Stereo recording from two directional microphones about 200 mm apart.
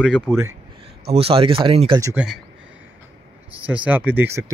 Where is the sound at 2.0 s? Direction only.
15° right (ahead or behind).